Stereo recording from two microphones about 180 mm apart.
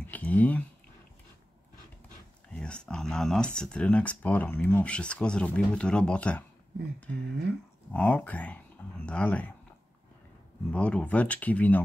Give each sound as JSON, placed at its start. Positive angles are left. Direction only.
{"t": 0.0, "sound": "speech", "side_deg": 10}
{"t": 2.5, "sound": "speech", "side_deg": 5}
{"t": 7.9, "sound": "speech", "side_deg": 10}
{"t": 10.7, "sound": "speech", "side_deg": 5}